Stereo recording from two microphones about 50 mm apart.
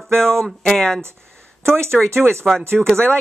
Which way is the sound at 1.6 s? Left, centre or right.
Right.